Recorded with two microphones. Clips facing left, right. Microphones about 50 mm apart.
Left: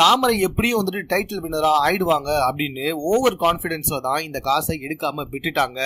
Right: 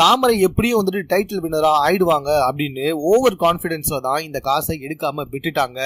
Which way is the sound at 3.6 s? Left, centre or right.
Left.